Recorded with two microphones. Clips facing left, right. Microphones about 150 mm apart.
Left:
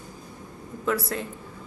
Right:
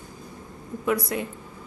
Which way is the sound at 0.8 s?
10° right (ahead or behind).